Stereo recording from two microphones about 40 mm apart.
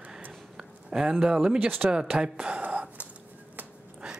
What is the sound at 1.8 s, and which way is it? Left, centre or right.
Speech, right.